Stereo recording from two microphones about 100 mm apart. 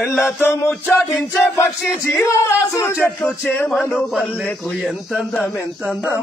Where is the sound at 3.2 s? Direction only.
10° left (ahead or behind).